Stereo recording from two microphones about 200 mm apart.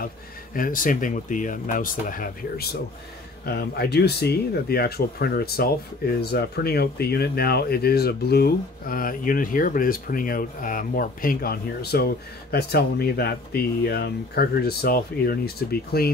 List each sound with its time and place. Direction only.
0.6 s speech: 40° left (ahead or behind)